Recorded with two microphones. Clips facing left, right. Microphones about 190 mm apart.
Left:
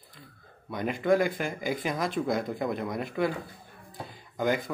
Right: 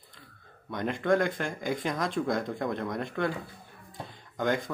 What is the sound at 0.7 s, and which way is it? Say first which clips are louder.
Speech: left 1 dB; 5° left (ahead or behind).